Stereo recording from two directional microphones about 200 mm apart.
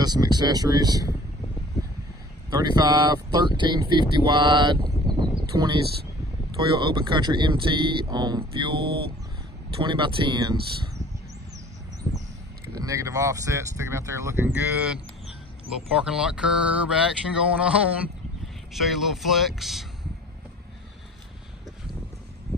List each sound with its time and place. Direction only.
0.0 s speech: 20° right (ahead or behind)
2.5 s speech: 20° right (ahead or behind)
9.8 s speech: 25° right (ahead or behind)
12.7 s speech: 15° right (ahead or behind)
16.0 s speech: 5° right (ahead or behind)